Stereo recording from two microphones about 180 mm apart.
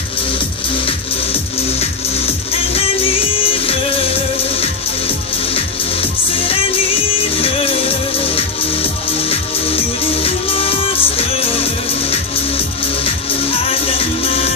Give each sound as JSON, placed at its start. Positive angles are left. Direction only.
{"t": 2.5, "sound": "music", "side_deg": 30}